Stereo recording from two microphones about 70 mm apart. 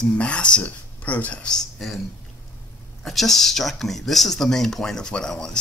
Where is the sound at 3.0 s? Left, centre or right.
Centre.